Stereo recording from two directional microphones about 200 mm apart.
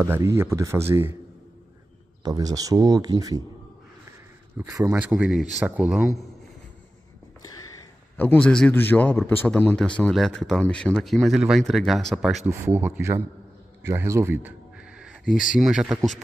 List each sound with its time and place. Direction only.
0.0 s speech: 15° right (ahead or behind)
2.2 s speech: 20° right (ahead or behind)
4.6 s speech: 5° right (ahead or behind)
8.2 s speech: 5° left (ahead or behind)
12.4 s speech: 15° right (ahead or behind)
13.8 s a sound: 15° right (ahead or behind)
15.5 s speech: 5° right (ahead or behind)